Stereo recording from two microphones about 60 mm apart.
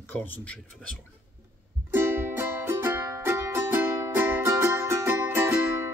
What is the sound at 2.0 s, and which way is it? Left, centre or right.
Music, right.